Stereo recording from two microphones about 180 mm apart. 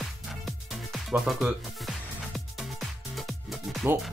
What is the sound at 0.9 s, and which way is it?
Music, 5° right (ahead or behind).